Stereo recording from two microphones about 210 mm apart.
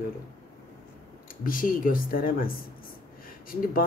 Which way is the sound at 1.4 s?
40° left (ahead or behind).